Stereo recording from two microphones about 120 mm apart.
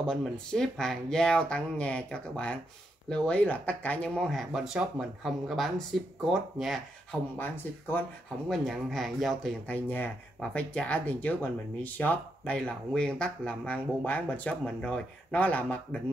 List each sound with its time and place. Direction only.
0.0 s speech: 5° left (ahead or behind)
7.3 s speech: 15° left (ahead or behind)
8.5 s speech: centre (ahead or behind)
9.7 s speech: 15° left (ahead or behind)